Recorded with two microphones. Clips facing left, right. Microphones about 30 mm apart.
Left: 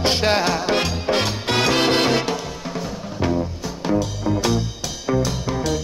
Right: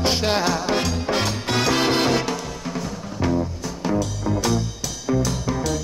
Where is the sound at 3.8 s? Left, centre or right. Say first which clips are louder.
Left 2 dB; centre.